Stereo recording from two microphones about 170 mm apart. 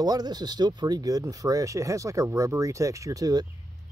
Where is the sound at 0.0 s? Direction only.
25° right (ahead or behind).